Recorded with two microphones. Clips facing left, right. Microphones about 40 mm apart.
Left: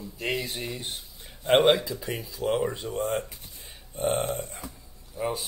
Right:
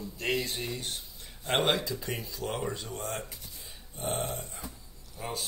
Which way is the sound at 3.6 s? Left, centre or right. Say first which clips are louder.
Left 10 dB; left.